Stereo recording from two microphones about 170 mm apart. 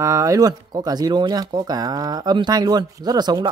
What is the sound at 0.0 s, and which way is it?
Speech, 20° right (ahead or behind).